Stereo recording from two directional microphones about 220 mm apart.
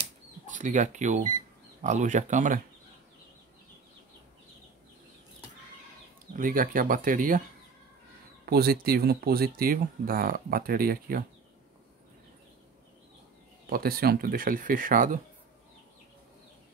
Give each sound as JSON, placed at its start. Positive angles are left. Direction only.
{"t": 0.5, "sound": "speech", "side_deg": -35}
{"t": 6.3, "sound": "speech", "side_deg": -40}
{"t": 8.5, "sound": "speech", "side_deg": -45}
{"t": 13.7, "sound": "speech", "side_deg": -40}